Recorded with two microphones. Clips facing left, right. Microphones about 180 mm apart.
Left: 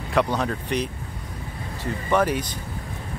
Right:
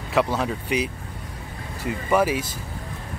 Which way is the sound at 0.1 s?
5° right (ahead or behind).